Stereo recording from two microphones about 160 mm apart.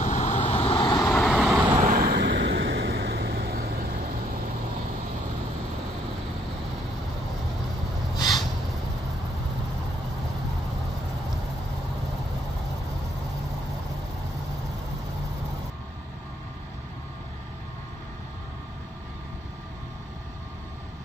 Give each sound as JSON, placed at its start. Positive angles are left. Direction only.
{"t": 0.0, "sound": "vehicle", "side_deg": 50}
{"t": 1.1, "sound": "vehicle", "side_deg": 0}
{"t": 1.5, "sound": "vehicle", "side_deg": -15}
{"t": 1.8, "sound": "vehicle", "side_deg": -50}
{"t": 2.0, "sound": "vehicle", "side_deg": -90}